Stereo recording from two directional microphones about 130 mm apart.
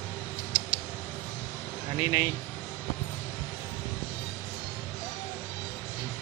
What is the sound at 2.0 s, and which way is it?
Speech, 20° right (ahead or behind).